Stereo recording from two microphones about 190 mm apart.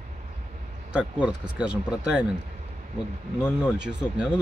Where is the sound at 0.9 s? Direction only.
5° right (ahead or behind).